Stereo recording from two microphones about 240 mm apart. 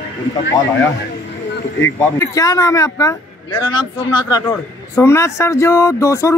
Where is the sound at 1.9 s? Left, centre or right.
Centre.